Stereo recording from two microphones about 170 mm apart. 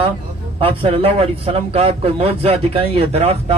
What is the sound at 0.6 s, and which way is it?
A man's voice, 35° right (ahead or behind).